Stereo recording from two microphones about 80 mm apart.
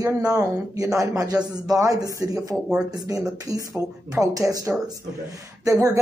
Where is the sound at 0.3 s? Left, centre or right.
Right.